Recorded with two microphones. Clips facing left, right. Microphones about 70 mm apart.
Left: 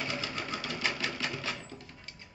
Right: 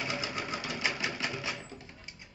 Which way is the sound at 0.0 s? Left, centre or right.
Centre.